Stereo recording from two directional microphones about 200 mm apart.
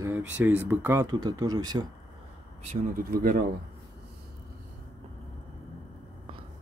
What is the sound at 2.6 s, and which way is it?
Speech, 45° right (ahead or behind).